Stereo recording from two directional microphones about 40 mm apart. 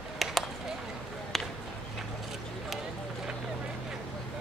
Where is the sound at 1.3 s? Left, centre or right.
Centre.